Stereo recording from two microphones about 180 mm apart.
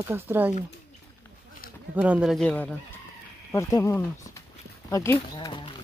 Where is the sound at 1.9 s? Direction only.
5° right (ahead or behind); by 5.7 s 25° left (ahead or behind).